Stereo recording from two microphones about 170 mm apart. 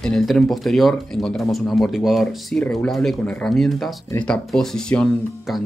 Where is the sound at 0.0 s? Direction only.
Centre (ahead or behind).